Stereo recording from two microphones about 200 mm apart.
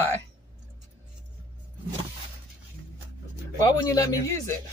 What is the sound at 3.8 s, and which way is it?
Speech, 20° left (ahead or behind).